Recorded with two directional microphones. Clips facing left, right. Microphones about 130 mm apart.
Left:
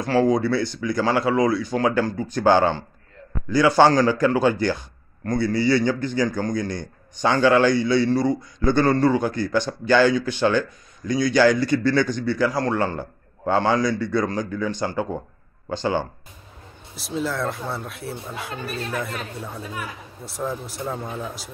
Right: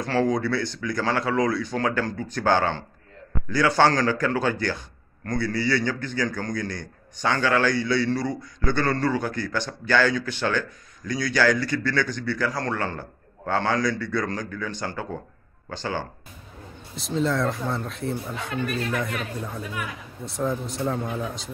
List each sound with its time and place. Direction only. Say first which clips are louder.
0.0 s a man's voice: left 4 dB; 10° left (ahead or behind)
16.9 s speech: right 2 dB; 5° left (ahead or behind)
20.2 s speech: right 2 dB; centre (ahead or behind)